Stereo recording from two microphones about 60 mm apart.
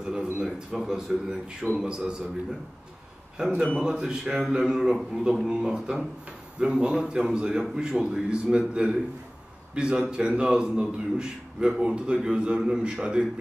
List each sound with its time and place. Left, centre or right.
0.0 s a man's voice: centre
3.3 s a man's voice: centre